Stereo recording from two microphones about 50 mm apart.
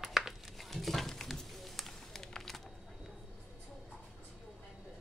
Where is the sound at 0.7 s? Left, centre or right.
Centre.